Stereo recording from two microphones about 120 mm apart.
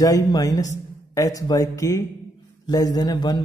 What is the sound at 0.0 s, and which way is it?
A man's voice, 30° left (ahead or behind).